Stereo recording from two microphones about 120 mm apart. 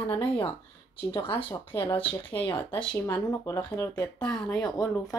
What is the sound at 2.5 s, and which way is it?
Speech, 15° left (ahead or behind).